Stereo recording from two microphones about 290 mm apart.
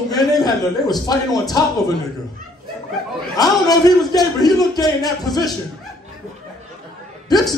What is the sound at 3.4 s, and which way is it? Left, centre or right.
A man's voice, centre.